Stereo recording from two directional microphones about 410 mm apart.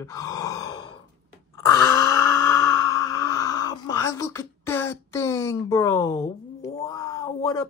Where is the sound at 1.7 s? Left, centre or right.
Centre.